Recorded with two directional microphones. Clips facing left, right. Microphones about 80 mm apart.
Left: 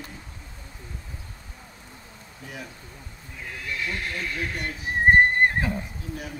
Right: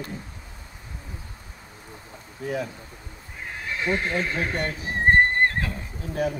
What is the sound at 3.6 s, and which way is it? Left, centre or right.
Speech, right.